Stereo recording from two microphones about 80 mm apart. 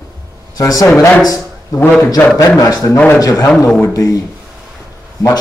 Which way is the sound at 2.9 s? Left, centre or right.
Left.